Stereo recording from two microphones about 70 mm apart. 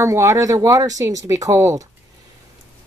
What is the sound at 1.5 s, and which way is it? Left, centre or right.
Speech, right.